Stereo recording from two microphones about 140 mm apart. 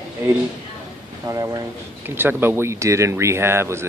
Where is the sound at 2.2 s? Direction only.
15° right (ahead or behind).